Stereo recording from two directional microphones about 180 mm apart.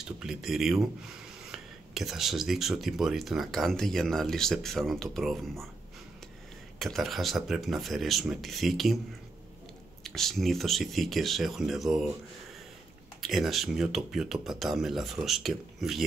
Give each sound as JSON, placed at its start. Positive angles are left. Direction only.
{"t": 0.0, "sound": "speech", "side_deg": -5}
{"t": 6.8, "sound": "speech", "side_deg": 0}
{"t": 10.0, "sound": "speech", "side_deg": 0}
{"t": 13.2, "sound": "speech", "side_deg": 0}